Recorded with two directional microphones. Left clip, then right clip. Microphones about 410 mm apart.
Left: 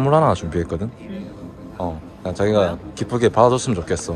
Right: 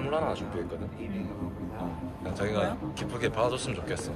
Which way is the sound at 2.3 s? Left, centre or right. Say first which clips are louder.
Left 12 dB; centre.